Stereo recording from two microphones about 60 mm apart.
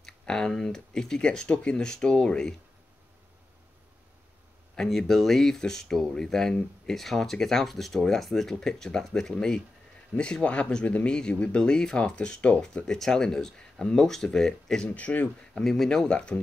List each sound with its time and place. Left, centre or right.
0.0 s speech: centre
4.7 s speech: centre
15.0 s speech: left
15.5 s speech: centre